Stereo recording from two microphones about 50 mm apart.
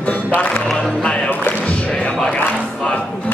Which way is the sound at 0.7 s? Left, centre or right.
Centre.